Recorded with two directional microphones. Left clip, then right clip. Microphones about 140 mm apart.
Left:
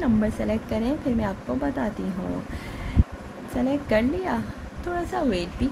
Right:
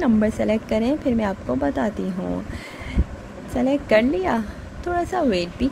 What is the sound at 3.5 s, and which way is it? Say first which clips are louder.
Speech: right 5 dB; 45° right (ahead or behind).